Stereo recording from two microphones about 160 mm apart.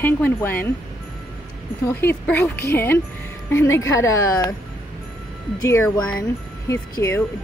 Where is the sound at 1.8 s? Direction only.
15° left (ahead or behind).